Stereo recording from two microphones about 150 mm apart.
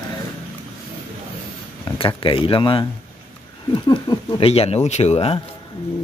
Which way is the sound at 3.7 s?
30° left (ahead or behind).